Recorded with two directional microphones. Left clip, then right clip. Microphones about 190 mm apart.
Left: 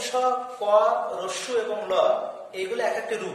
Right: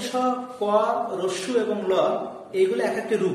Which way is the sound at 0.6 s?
Centre (ahead or behind).